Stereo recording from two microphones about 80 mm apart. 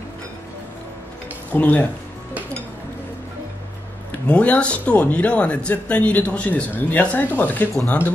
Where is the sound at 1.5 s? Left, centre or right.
Left.